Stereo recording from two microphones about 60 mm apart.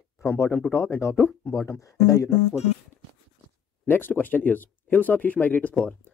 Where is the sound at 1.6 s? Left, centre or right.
Left.